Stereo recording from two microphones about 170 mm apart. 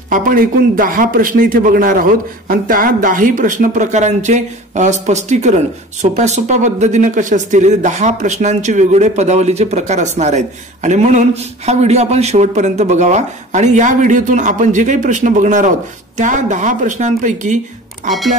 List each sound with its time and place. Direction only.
0.1 s speech: 50° right (ahead or behind)